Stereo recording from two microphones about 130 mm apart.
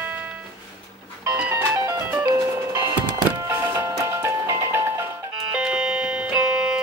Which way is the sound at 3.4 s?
20° right (ahead or behind).